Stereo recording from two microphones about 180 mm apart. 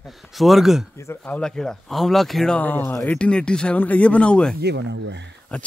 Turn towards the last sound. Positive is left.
turn(degrees=5)  # may be behind; listen again after turning